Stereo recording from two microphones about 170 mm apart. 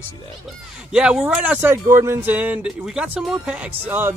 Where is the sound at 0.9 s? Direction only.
5° right (ahead or behind).